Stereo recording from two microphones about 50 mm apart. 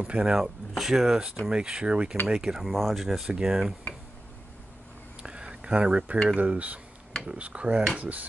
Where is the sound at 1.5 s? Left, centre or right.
Centre.